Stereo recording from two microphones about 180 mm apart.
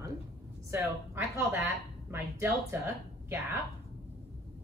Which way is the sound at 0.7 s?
15° right (ahead or behind).